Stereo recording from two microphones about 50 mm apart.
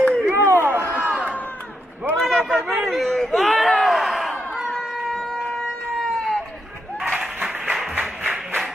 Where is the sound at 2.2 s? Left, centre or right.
Centre.